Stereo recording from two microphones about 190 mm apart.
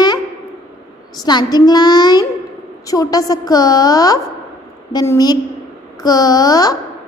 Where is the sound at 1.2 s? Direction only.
20° left (ahead or behind).